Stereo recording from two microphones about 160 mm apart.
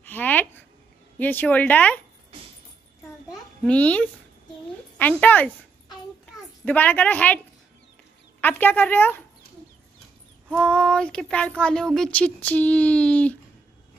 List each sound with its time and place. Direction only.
0.0 s a sound: 10° left (ahead or behind)
1.1 s speech: 10° left (ahead or behind)
3.6 s a woman's voice: 10° left (ahead or behind)
6.6 s speech: 10° left (ahead or behind)
8.4 s speech: 10° left (ahead or behind)
10.5 s speech: 5° left (ahead or behind)